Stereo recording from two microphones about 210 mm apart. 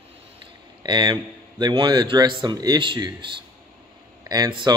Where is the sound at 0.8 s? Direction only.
20° right (ahead or behind).